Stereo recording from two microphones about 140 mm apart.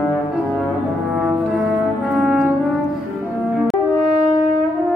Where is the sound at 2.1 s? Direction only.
Centre (ahead or behind).